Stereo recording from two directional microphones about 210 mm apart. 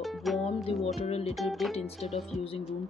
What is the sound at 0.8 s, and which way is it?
Speech, 30° left (ahead or behind).